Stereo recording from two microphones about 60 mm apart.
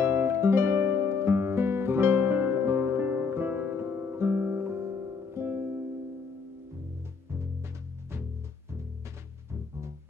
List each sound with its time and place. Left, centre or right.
0.0 s music: right